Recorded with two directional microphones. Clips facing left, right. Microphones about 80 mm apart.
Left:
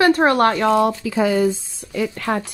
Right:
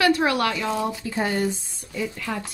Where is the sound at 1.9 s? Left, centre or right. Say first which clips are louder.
Left 7 dB; left.